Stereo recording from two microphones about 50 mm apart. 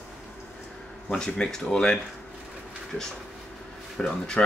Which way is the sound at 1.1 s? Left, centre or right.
Centre.